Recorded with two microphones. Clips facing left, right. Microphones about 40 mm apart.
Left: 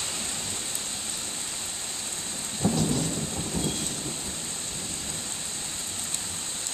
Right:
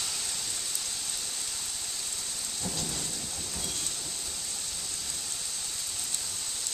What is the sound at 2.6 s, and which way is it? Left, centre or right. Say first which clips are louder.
Thunder: left 12 dB; left.